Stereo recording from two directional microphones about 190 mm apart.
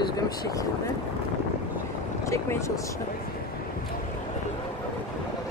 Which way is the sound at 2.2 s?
15° left (ahead or behind).